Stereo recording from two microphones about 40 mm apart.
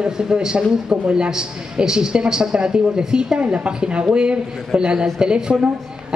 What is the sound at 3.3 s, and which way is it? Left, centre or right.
A man's voice, right.